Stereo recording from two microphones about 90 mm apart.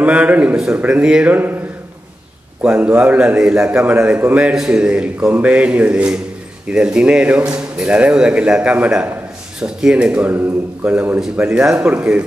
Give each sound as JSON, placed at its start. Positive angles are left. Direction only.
{"t": 0.0, "sound": "speech", "side_deg": -15}
{"t": 2.6, "sound": "speech", "side_deg": -15}